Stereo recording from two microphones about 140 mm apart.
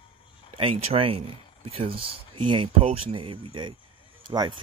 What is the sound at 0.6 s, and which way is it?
Speech, 40° right (ahead or behind).